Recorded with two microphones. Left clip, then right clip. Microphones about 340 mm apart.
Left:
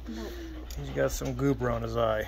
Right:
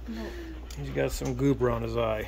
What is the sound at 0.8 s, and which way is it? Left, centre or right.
Speech, centre.